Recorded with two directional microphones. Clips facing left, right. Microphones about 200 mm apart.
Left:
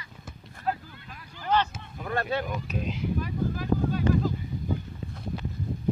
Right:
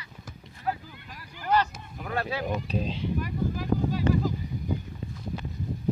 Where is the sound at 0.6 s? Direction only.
10° right (ahead or behind).